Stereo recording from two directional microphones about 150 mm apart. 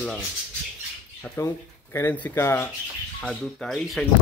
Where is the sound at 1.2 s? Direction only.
15° left (ahead or behind).